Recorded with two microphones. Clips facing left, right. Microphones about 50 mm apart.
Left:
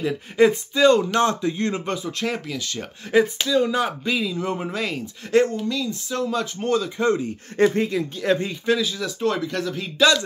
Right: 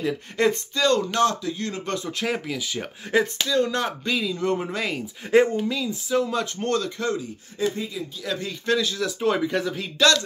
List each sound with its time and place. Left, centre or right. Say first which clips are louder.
0.0 s speech: left 4 dB; centre; by 1.8 s left
2.0 s speech: even; centre
5.3 s speech: right 1 dB; centre
7.0 s speech: left 6 dB; left
7.5 s speech: left 8 dB; left
8.6 s speech: even; centre
9.2 s speech: right 1 dB; centre
10.0 s speech: left 2 dB; centre